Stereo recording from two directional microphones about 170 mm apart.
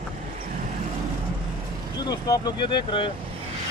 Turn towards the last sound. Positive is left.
turn(degrees=30)  # may be behind; listen again after turning